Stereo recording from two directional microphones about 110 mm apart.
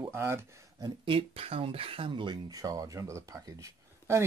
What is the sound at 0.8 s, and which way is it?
Speech, 50° right (ahead or behind).